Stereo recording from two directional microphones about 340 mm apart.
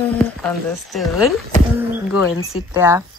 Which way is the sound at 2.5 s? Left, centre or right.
Centre.